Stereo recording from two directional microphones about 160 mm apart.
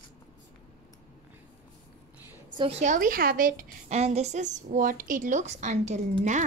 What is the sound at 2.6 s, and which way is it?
A woman's voice, 40° right (ahead or behind).